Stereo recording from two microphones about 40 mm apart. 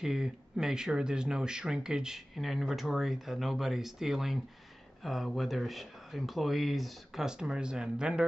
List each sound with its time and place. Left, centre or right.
0.0 s speech: centre
2.3 s speech: centre
7.2 s speech: centre